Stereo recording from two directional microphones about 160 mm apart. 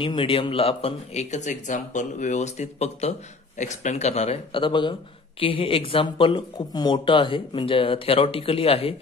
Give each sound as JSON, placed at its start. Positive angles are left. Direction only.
{"t": 0.0, "sound": "speech", "side_deg": 30}